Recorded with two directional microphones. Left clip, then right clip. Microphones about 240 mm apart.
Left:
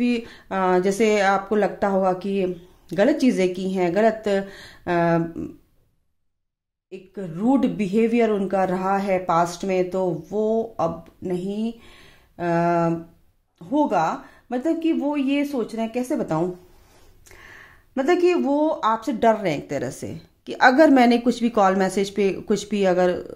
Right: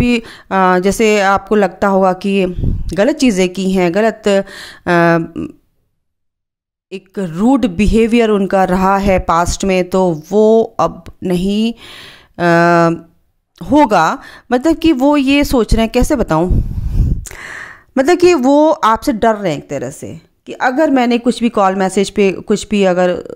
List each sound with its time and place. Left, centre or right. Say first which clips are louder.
0.0 s speech: right 9 dB; right
6.9 s speech: right 11 dB; right